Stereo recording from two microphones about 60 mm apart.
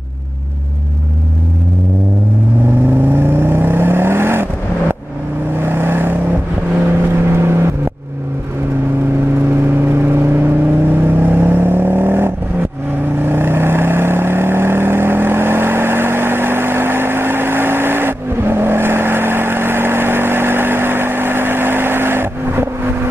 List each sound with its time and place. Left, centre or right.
2.9 s vehicle: right
5.6 s vehicle: right
9.5 s vehicle: right